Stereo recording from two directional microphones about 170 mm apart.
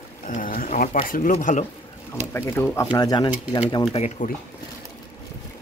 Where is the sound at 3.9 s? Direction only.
40° left (ahead or behind).